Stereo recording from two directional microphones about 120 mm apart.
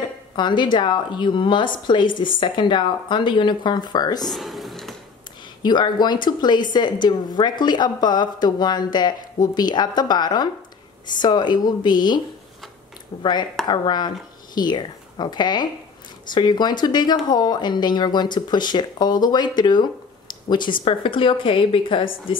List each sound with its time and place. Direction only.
0.4 s a woman's voice: 40° left (ahead or behind)
4.3 s a sound: centre (ahead or behind)
5.6 s a woman's voice: 40° left (ahead or behind)
13.2 s a woman's voice: 40° left (ahead or behind)